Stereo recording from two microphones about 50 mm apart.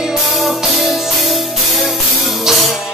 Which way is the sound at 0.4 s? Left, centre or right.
Centre.